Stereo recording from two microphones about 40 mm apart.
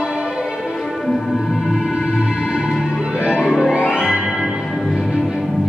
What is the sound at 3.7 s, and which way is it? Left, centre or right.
Music, right.